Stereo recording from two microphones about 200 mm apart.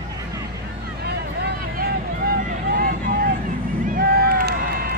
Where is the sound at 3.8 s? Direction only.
50° right (ahead or behind).